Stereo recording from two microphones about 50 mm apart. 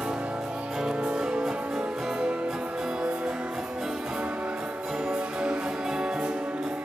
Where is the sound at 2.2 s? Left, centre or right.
Right.